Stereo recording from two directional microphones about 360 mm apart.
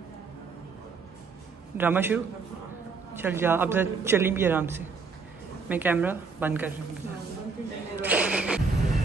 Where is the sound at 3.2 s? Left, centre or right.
Centre.